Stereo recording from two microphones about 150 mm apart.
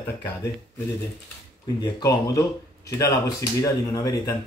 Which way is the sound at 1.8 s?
25° left (ahead or behind).